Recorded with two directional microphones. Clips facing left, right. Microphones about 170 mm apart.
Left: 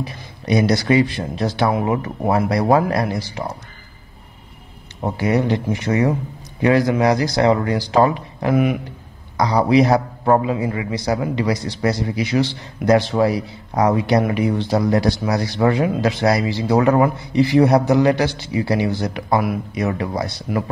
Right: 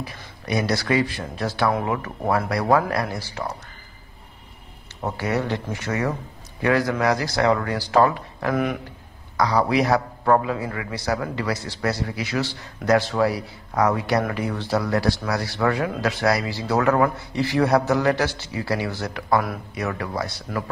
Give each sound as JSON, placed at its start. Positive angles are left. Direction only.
{"t": 0.0, "sound": "a man's voice", "side_deg": 20}
{"t": 5.0, "sound": "a man's voice", "side_deg": 15}